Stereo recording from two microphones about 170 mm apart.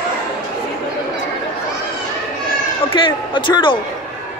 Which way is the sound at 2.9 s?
30° left (ahead or behind).